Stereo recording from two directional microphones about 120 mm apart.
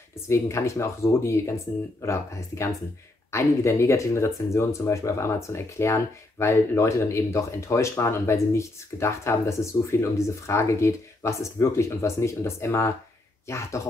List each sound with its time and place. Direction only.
0.3 s speech: 25° left (ahead or behind)